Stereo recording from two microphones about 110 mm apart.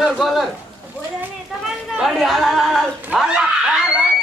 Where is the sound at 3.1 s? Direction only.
5° right (ahead or behind).